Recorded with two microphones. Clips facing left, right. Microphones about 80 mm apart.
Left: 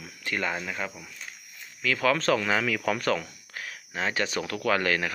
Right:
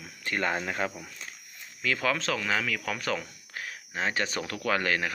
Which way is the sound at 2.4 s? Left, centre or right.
Centre.